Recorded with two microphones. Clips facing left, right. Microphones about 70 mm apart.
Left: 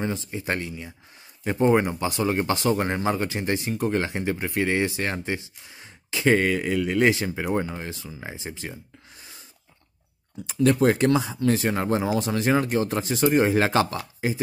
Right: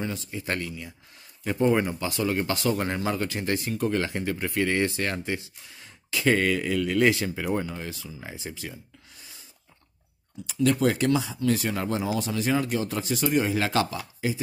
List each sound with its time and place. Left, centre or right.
0.0 s speech: left
10.5 s speech: left